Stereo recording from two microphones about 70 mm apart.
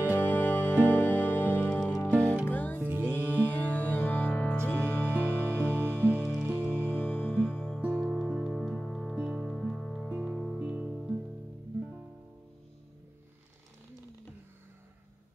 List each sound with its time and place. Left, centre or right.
0.2 s music: left
2.8 s music: right
3.4 s music: left
5.5 s music: right
6.9 s music: centre
9.1 s music: centre
9.4 s music: centre
10.6 s music: centre